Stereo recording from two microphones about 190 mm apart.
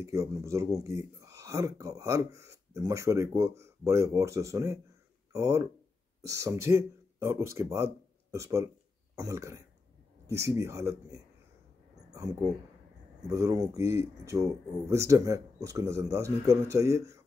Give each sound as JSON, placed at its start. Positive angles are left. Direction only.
{"t": 0.0, "sound": "speech", "side_deg": -15}
{"t": 12.1, "sound": "a sound", "side_deg": -20}
{"t": 13.3, "sound": "speech", "side_deg": -15}